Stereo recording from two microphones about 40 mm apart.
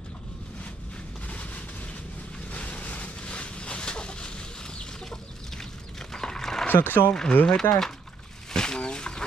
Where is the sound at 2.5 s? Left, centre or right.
Left; by 6.7 s centre.